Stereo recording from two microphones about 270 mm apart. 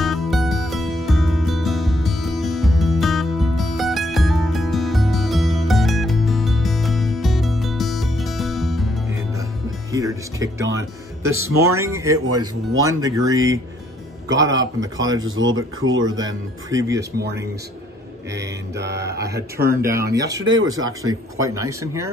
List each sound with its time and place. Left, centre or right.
0.0 s music: centre
9.9 s speech: centre
11.2 s speech: right
11.5 s speech: centre
12.3 s speech: right
12.8 s speech: centre
14.3 s speech: right
16.7 s speech: centre
18.9 s speech: centre
20.4 s speech: right
21.0 s speech: centre